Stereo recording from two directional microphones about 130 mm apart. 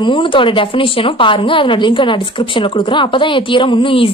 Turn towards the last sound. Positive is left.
turn(degrees=40)  # may be behind; listen again after turning